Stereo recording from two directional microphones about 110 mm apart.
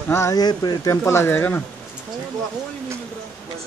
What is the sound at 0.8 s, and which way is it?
Speech, 25° left (ahead or behind).